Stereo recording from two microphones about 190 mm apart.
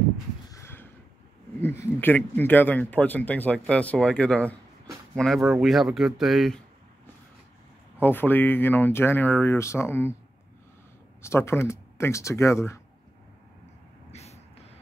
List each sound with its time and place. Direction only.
0.5 s a sound: 15° left (ahead or behind)
1.6 s speech: 10° left (ahead or behind)
8.0 s speech: 10° left (ahead or behind)
11.2 s speech: 15° left (ahead or behind)
14.1 s vehicle: 35° left (ahead or behind)